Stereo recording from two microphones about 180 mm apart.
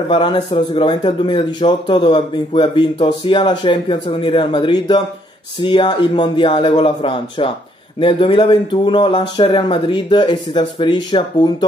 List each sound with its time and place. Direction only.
0.1 s a man's voice: 25° left (ahead or behind)